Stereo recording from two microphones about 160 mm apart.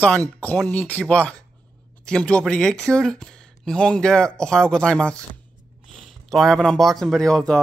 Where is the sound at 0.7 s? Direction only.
10° left (ahead or behind).